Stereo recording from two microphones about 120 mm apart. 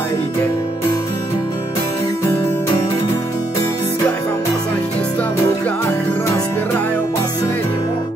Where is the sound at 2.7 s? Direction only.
40° left (ahead or behind).